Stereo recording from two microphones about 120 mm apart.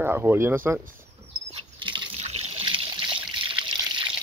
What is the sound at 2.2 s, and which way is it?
Water, 60° right (ahead or behind).